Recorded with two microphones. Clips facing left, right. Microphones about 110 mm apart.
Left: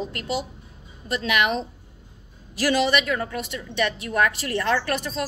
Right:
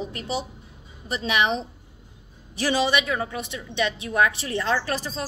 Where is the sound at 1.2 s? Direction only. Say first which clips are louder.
Even; 30° right (ahead or behind).